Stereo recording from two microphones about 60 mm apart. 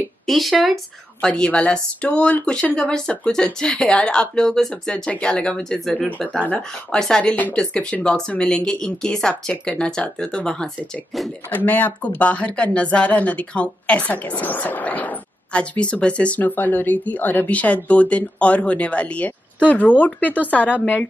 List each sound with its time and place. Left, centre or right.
0.3 s speech: centre
1.2 s speech: centre
11.5 s speech: left